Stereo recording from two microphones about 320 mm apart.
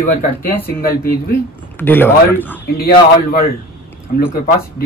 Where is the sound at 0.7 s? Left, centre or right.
Left.